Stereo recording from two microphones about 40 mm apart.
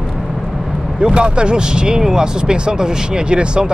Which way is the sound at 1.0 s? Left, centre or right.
Right.